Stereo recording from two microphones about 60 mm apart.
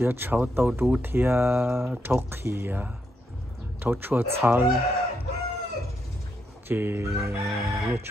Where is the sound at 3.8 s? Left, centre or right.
Right.